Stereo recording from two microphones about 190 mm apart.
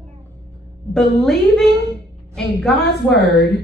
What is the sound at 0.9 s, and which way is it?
Speech, centre (ahead or behind).